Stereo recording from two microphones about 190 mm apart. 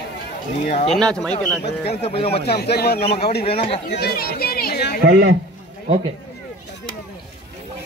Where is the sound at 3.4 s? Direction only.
30° left (ahead or behind).